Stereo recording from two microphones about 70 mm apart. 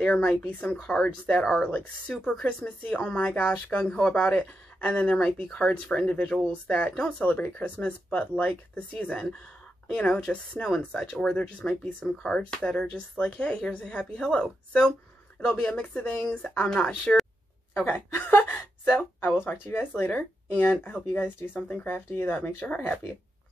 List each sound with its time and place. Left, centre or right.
0.0 s speech: centre
17.8 s speech: left